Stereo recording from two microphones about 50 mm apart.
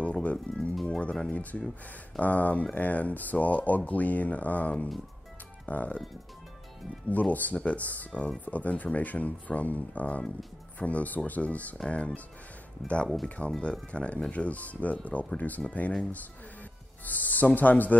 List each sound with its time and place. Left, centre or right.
0.0 s music: left
1.3 s speech: left
7.1 s speech: left
17.0 s speech: left